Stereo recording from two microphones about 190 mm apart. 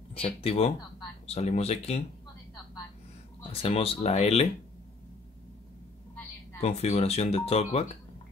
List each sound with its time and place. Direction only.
0.1 s speech: 30° left (ahead or behind)
3.6 s speech: 30° left (ahead or behind)
6.6 s speech: 35° left (ahead or behind)